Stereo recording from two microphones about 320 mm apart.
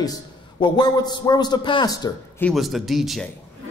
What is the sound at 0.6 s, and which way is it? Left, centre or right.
Speech, centre.